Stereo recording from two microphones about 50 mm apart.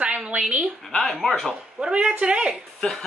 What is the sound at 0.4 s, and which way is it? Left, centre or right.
Speech, centre.